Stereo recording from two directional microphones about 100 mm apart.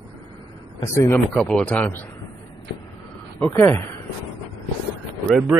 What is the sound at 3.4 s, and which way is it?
Speech, 30° left (ahead or behind).